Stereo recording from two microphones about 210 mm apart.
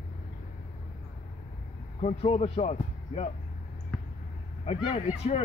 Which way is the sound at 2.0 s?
30° left (ahead or behind).